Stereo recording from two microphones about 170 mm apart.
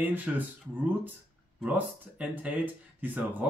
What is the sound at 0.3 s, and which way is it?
Speech, 5° right (ahead or behind).